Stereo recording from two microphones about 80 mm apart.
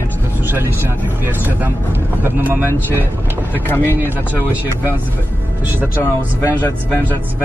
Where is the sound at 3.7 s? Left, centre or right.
Left.